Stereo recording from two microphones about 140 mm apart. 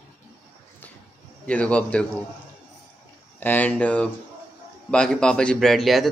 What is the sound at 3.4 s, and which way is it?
A man's voice, 10° left (ahead or behind).